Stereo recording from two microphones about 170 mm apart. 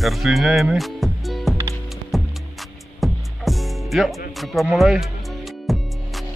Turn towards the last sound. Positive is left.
turn(degrees=0)  # may be behind; listen again after turning